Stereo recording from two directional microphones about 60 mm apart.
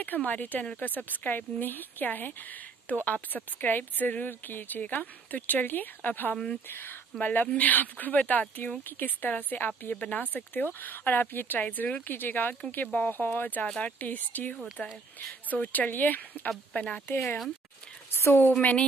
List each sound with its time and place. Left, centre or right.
0.0 s speech: left
6.3 s speech: centre
6.7 s speech: left
13.7 s speech: centre
13.9 s speech: left
18.1 s a woman's voice: left
18.5 s speech: left